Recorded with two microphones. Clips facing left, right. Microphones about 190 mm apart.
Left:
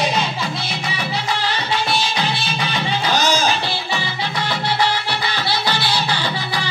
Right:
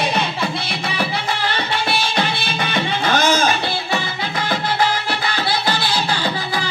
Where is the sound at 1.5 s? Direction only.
55° right (ahead or behind).